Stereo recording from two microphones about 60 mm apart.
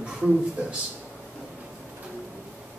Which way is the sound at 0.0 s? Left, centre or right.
Centre.